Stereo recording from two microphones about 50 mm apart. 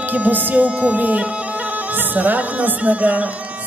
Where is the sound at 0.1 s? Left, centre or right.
Right.